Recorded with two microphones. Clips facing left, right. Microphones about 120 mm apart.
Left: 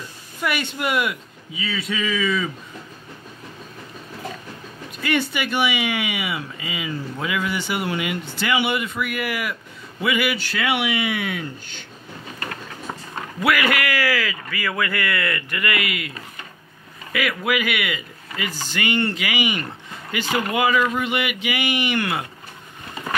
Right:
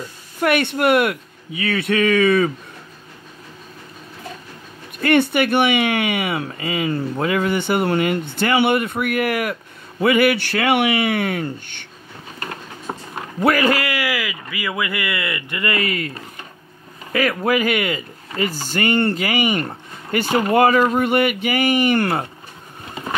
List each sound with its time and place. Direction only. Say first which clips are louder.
0.4 s speech: right 7 dB; 55° right (ahead or behind)
5.0 s speech: right 7 dB; 55° right (ahead or behind)
12.9 s a sound: right 5 dB; 35° right (ahead or behind)
13.4 s a man's voice: right 4 dB; 35° right (ahead or behind)
17.1 s speech: right 5 dB; 35° right (ahead or behind)
20.2 s a man's voice: right 4 dB; 30° right (ahead or behind)
20.5 s speech: right 6 dB; 45° right (ahead or behind)